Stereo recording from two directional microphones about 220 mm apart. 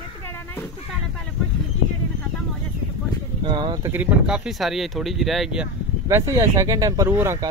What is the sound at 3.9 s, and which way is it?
Speech, 5° right (ahead or behind).